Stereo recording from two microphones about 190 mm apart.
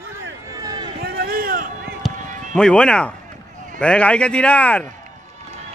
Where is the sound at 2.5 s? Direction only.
5° left (ahead or behind).